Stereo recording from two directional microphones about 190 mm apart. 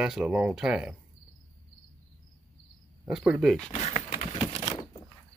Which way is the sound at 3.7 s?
35° left (ahead or behind).